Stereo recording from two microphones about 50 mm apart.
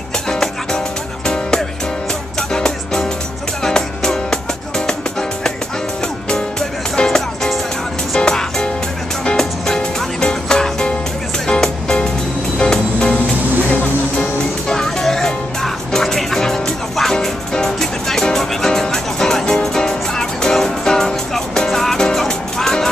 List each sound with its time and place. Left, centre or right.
1.2 s music: centre
7.0 s music: centre
14.1 s music: centre